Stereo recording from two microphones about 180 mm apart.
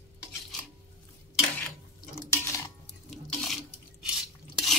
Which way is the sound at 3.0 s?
Centre (ahead or behind).